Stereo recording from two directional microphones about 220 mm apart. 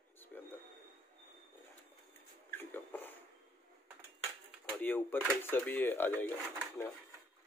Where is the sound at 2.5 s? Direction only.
10° left (ahead or behind).